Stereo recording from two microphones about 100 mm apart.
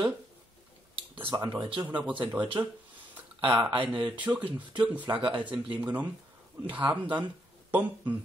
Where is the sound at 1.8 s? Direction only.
15° right (ahead or behind).